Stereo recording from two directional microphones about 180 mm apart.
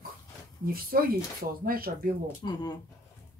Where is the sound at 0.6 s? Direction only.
55° right (ahead or behind).